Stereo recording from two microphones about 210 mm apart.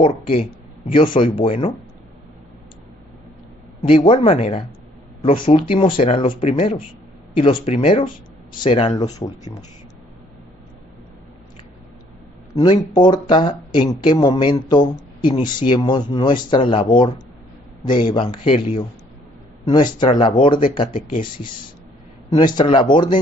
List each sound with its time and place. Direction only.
0.3 s speech: 25° left (ahead or behind)
3.8 s speech: 25° left (ahead or behind)
12.5 s speech: 20° left (ahead or behind)
17.8 s speech: 20° left (ahead or behind)
22.4 s speech: 20° left (ahead or behind)